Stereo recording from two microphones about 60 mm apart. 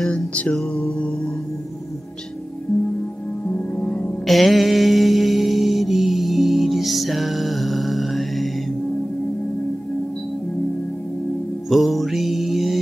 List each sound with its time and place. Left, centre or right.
0.3 s music: left
3.5 s music: left
4.3 s mantra: centre
11.7 s music: centre